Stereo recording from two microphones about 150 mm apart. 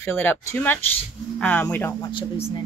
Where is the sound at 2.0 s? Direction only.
30° left (ahead or behind).